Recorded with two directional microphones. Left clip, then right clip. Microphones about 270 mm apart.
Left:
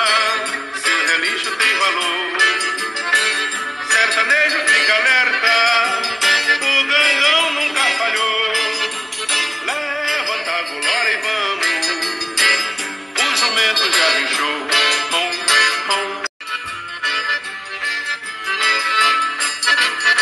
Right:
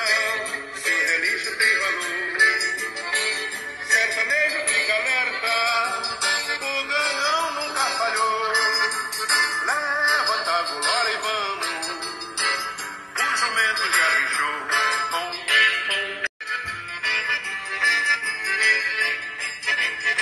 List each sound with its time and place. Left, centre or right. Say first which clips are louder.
0.0 s music: left 6 dB; left
7.0 s music: left 7 dB; left
7.3 s music: left 7 dB; left
9.7 s music: left 1 dB; left
11.1 s music: left 6 dB; left
13.2 s music: left 5 dB; left
15.5 s music: left 3 dB; left
18.6 s music: left 6 dB; left